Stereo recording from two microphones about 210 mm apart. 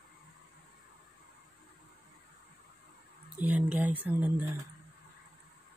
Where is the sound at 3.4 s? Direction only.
5° right (ahead or behind).